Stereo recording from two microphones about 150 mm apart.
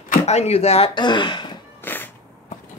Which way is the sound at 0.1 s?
45° left (ahead or behind).